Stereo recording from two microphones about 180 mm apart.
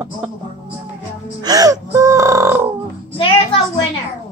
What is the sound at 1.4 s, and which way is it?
Gasp, 20° right (ahead or behind).